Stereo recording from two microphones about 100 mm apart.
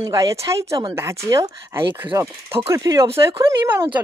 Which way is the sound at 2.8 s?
40° right (ahead or behind).